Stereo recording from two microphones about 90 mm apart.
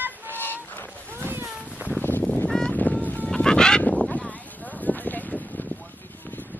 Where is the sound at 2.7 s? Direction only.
20° left (ahead or behind).